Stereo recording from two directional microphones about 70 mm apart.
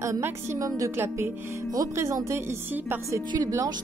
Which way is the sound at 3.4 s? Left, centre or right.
Right.